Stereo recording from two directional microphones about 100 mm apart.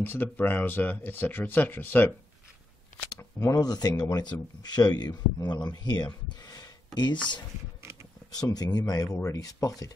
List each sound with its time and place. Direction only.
0.0 s speech: 15° left (ahead or behind)
3.2 s speech: 30° left (ahead or behind); by 7.2 s 45° left (ahead or behind)
8.3 s speech: 40° left (ahead or behind)